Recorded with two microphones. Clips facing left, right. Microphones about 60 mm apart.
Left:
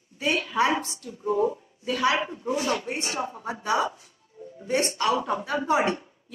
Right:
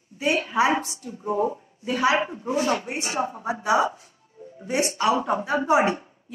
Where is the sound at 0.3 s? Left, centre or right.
Right.